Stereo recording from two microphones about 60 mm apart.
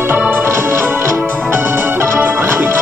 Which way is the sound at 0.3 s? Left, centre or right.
Right.